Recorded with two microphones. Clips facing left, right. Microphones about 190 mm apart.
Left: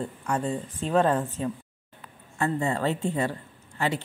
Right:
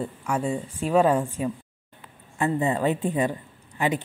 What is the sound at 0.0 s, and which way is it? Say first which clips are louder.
A woman's voice: right 2 dB; 10° right (ahead or behind).